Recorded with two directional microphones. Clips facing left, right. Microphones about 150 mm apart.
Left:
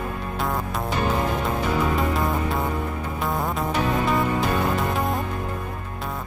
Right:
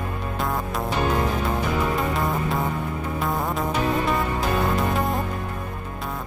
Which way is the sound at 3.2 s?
Centre (ahead or behind).